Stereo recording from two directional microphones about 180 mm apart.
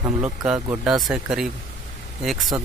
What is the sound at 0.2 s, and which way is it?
Speech, 5° right (ahead or behind).